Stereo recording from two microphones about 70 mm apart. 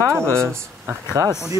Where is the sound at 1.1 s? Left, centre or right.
Right.